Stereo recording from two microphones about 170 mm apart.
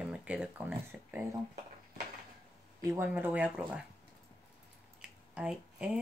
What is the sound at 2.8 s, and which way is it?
Speech, 10° right (ahead or behind).